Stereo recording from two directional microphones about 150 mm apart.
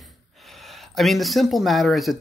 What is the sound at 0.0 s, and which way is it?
Speech, centre (ahead or behind).